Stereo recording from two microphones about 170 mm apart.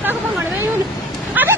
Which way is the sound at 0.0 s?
10° right (ahead or behind).